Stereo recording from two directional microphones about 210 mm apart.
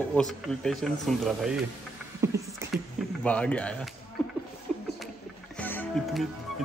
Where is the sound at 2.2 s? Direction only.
15° right (ahead or behind).